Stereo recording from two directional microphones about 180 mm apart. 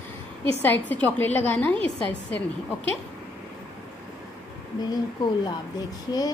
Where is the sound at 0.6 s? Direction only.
10° left (ahead or behind).